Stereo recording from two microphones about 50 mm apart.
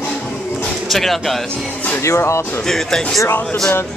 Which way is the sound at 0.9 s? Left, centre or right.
Centre.